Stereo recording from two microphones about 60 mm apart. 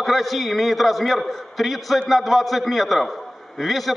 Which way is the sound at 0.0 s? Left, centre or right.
Centre.